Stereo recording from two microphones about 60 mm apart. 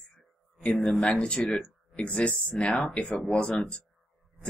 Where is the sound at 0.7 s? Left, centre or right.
Centre.